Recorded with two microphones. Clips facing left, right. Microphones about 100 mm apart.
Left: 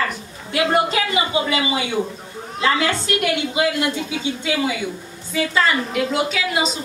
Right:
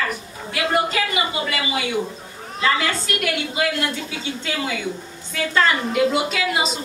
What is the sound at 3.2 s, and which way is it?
Speech, 20° left (ahead or behind).